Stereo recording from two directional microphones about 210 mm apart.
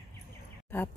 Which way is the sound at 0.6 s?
10° left (ahead or behind).